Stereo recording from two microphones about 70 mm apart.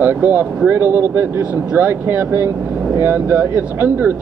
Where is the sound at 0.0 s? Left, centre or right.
Right.